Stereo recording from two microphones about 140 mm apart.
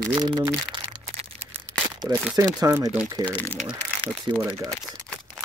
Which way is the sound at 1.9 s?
30° right (ahead or behind).